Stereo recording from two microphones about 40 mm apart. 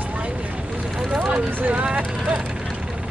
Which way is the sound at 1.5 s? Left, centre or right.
Right.